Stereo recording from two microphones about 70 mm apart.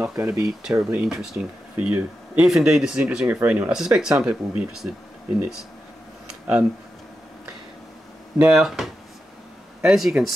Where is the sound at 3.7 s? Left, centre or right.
Centre.